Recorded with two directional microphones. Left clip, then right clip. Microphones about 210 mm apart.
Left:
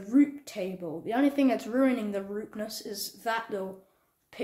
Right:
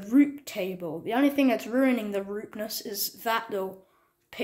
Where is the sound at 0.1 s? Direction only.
25° right (ahead or behind).